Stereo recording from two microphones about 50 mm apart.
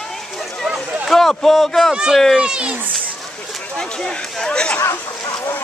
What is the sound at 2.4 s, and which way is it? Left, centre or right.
Speech, right.